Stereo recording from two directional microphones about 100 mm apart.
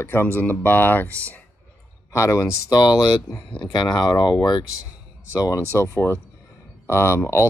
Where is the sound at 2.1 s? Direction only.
30° left (ahead or behind).